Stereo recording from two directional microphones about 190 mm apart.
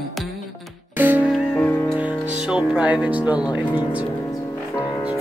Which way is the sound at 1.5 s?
10° left (ahead or behind).